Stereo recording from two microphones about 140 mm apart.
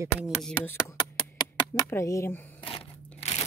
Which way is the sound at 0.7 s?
20° left (ahead or behind).